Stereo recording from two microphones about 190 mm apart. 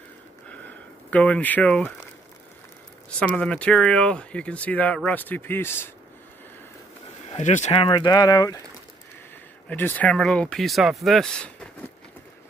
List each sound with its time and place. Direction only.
0.5 s a sound: 5° left (ahead or behind)
3.2 s speech: 5° left (ahead or behind)
7.2 s speech: 35° left (ahead or behind); by 8.5 s 20° left (ahead or behind)
9.7 s speech: 10° left (ahead or behind)